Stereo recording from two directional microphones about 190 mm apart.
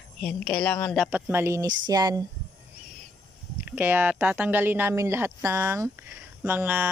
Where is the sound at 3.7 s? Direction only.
10° right (ahead or behind).